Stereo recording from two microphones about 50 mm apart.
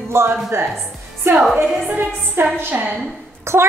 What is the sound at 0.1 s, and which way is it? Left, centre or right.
Speech, right.